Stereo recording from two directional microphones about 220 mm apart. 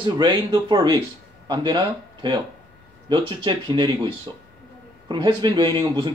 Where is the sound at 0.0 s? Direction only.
20° right (ahead or behind).